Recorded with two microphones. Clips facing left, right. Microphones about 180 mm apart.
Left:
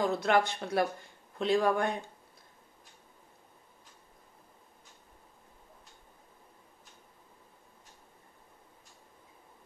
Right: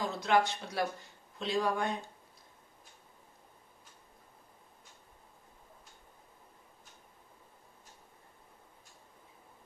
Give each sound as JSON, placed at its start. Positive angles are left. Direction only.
{"t": 0.0, "sound": "speech", "side_deg": 55}